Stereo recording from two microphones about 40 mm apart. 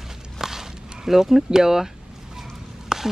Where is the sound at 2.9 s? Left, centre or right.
Centre.